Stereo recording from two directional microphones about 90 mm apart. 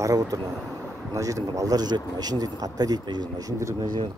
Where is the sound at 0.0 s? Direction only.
40° right (ahead or behind).